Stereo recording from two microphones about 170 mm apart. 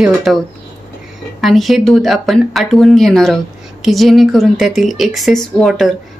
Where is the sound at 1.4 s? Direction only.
Centre (ahead or behind).